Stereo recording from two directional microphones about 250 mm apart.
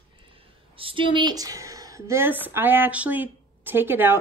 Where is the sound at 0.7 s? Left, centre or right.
Right.